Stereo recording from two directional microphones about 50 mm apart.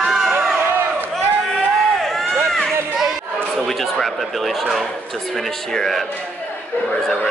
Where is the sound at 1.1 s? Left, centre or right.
Centre.